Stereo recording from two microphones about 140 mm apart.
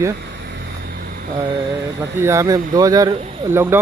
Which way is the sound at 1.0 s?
90° right.